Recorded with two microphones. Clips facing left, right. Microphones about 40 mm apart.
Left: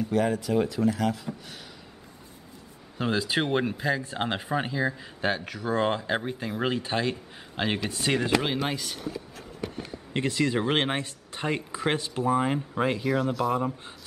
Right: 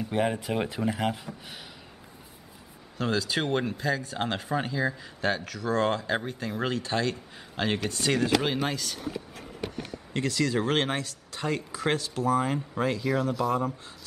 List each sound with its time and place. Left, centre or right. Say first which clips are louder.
0.1 s speech: left 2 dB; right
3.0 s speech: left 1 dB; centre
8.1 s speech: even; left
8.6 s speech: even; centre
10.1 s speech: left 1 dB; left
13.0 s speech: left 1 dB; centre